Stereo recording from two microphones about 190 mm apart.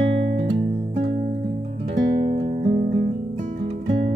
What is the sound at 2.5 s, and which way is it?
Music, 45° right (ahead or behind).